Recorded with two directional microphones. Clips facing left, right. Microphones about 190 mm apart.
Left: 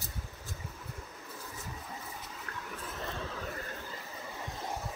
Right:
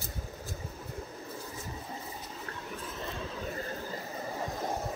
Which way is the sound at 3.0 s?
15° right (ahead or behind).